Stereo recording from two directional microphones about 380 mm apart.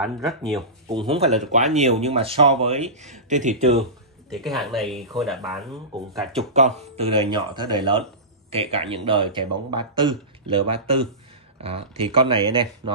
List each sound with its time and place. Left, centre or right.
0.0 s speech: centre
0.9 s speech: centre
4.3 s speech: centre
6.3 s speech: centre